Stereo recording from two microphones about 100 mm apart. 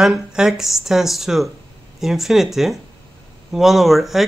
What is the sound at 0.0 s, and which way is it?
Speech, 5° right (ahead or behind).